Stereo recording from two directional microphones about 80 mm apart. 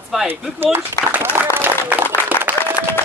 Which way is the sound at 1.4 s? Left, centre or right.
Right.